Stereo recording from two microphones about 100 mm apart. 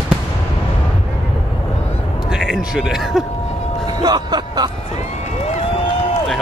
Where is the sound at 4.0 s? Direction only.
45° right (ahead or behind).